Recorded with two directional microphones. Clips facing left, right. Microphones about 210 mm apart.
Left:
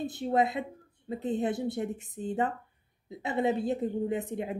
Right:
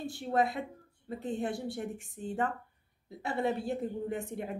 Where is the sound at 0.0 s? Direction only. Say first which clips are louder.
Left 3 dB; 20° left (ahead or behind).